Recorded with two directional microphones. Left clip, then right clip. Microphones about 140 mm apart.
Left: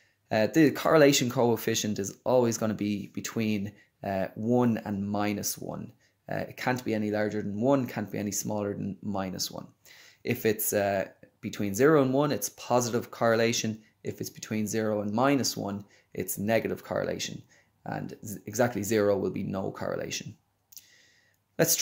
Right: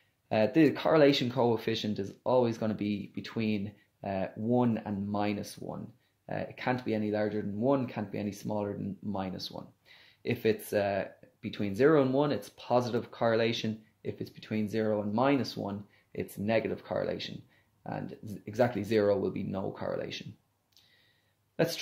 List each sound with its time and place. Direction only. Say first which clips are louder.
0.3 s speech: left 2 dB; 30° left (ahead or behind)